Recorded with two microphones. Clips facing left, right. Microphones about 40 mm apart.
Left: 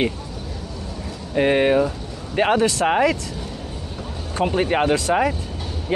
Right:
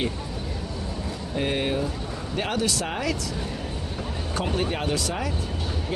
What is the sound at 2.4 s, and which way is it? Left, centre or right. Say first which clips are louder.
Speech: left 10 dB; left.